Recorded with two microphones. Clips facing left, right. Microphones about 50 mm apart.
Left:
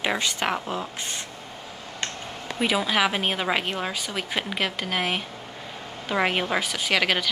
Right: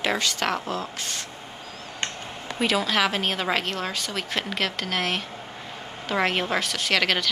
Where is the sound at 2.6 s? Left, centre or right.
Centre.